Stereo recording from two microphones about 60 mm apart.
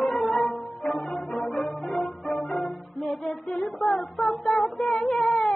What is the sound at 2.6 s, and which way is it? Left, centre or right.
Music, centre.